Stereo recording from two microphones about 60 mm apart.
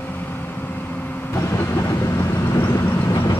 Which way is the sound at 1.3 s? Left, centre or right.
Left.